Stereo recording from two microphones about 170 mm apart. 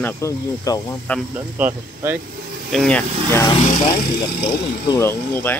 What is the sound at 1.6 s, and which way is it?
Speech, 10° right (ahead or behind).